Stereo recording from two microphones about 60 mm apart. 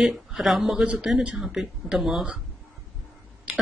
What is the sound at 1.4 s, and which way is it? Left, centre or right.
Speech, centre.